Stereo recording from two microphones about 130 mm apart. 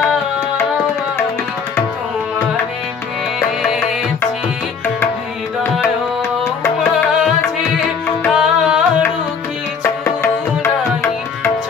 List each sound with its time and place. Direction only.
3.3 s music: 5° right (ahead or behind)
8.3 s music: 5° right (ahead or behind)
10.0 s music: 20° left (ahead or behind)